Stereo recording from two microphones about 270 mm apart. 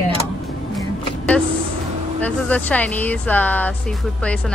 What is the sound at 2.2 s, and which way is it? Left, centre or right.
Speech, centre.